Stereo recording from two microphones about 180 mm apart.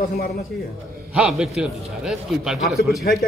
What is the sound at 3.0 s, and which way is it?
Speech, 60° left (ahead or behind).